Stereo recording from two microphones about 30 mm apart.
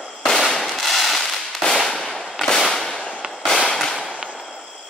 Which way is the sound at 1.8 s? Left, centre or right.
Centre.